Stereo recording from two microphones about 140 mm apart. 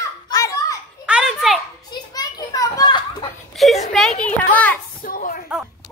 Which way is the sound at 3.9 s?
5° left (ahead or behind).